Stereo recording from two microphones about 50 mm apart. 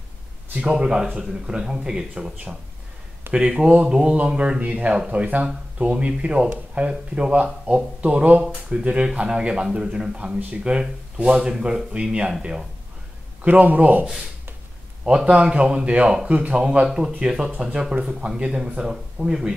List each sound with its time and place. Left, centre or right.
0.7 s speech: centre
3.3 s speech: centre
4.9 s speech: centre
5.2 s speech: right; by 12.6 s centre
13.4 s a man's voice: right
15.0 s speech: centre